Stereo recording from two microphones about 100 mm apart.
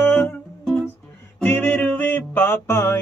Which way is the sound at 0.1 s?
10° left (ahead or behind).